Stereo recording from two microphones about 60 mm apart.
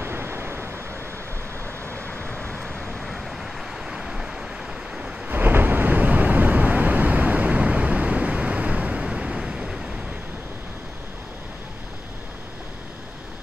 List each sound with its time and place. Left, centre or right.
0.0 s vehicle: right
2.3 s vehicle: centre
5.3 s vehicle: right; by 9.8 s centre